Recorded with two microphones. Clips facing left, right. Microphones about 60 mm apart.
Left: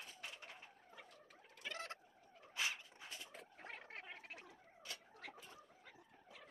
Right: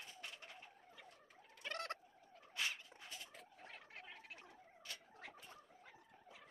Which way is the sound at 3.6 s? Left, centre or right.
Left.